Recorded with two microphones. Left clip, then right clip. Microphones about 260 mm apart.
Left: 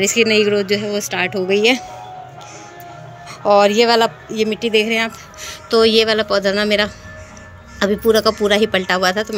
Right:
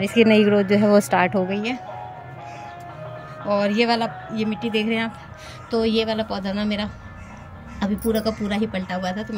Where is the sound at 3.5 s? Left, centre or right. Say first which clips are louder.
Left 9 dB; centre.